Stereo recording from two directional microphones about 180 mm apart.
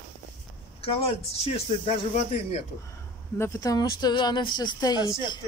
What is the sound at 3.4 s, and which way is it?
Speech, 15° left (ahead or behind).